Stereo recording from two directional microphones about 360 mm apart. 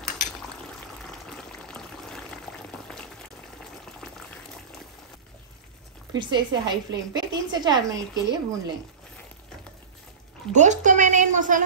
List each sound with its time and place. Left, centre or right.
1.3 s boiling: centre
6.1 s a woman's voice: centre
10.5 s speech: centre